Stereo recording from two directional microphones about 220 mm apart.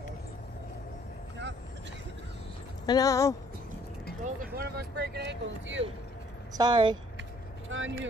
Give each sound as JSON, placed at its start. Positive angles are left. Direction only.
{"t": 2.9, "sound": "speech", "side_deg": 15}
{"t": 4.4, "sound": "speech", "side_deg": -45}
{"t": 6.5, "sound": "speech", "side_deg": -20}
{"t": 7.7, "sound": "speech", "side_deg": -60}